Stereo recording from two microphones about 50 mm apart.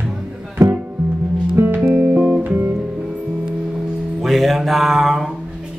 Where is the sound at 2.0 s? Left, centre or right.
Right.